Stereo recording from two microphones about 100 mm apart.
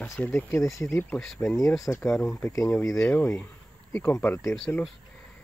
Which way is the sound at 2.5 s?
35° left (ahead or behind).